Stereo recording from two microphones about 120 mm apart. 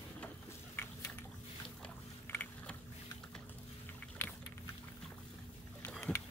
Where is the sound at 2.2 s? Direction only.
15° left (ahead or behind).